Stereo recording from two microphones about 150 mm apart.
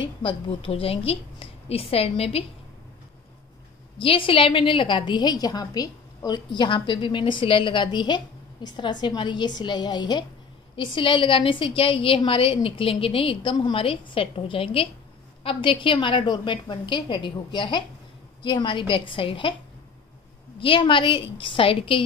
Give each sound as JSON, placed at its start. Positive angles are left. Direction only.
{"t": 0.2, "sound": "a woman's voice", "side_deg": 35}
{"t": 4.0, "sound": "a woman's voice", "side_deg": 35}
{"t": 20.5, "sound": "a woman's voice", "side_deg": 35}